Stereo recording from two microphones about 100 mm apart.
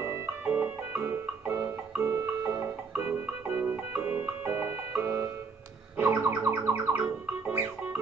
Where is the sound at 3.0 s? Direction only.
15° right (ahead or behind).